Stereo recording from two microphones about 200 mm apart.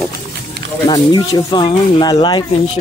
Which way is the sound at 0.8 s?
20° left (ahead or behind).